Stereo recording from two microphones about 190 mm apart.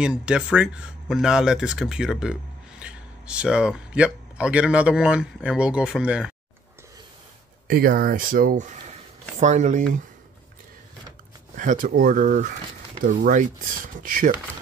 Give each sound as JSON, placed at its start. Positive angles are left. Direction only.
{"t": 0.0, "sound": "speech", "side_deg": -5}
{"t": 7.6, "sound": "speech", "side_deg": -50}
{"t": 11.5, "sound": "speech", "side_deg": -45}